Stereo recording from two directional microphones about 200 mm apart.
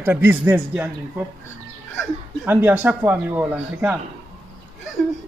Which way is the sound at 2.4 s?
10° right (ahead or behind).